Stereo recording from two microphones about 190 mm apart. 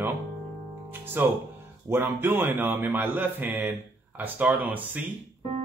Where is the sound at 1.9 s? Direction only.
10° right (ahead or behind).